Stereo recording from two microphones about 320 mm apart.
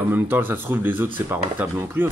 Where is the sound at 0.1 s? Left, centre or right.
Centre.